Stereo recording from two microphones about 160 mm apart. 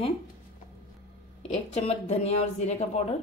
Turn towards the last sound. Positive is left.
turn(degrees=45)  # may be behind; listen again after turning